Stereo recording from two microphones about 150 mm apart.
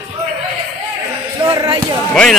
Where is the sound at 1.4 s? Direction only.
25° right (ahead or behind).